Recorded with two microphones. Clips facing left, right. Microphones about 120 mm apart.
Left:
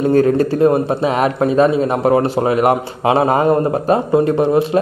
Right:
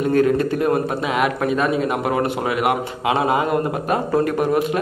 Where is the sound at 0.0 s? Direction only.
35° left (ahead or behind).